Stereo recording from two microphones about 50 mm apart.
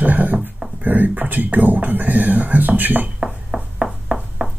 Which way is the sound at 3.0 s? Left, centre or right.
Right.